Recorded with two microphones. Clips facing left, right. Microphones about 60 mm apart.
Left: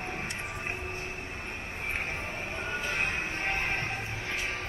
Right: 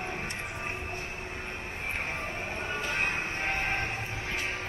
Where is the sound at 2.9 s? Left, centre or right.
Right.